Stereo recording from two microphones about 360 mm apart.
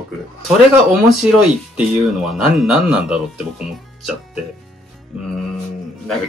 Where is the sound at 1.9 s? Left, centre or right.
Centre.